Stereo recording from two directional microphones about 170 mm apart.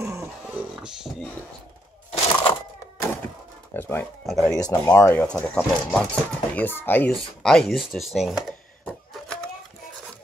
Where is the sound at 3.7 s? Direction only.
10° left (ahead or behind).